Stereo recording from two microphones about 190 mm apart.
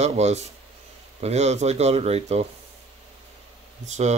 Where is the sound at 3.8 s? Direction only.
35° right (ahead or behind).